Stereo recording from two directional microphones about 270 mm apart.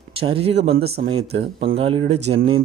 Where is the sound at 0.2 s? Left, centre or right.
Right.